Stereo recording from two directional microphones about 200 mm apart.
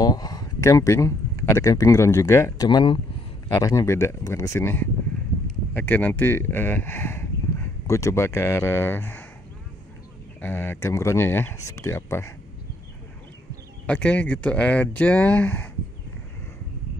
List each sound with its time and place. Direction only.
0.0 s a sound: 20° left (ahead or behind)
1.4 s speech: 15° left (ahead or behind)
10.4 s speech: 10° left (ahead or behind)
13.8 s speech: 5° left (ahead or behind)